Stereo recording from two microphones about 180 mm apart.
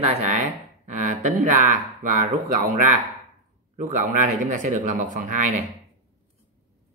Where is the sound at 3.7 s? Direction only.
45° right (ahead or behind).